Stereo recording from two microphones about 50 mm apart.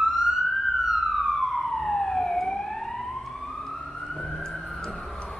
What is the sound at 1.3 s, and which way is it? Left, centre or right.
Emergency vehicle, centre.